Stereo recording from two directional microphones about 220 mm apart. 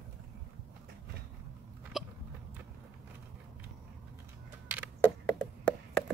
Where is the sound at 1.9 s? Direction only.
Centre (ahead or behind).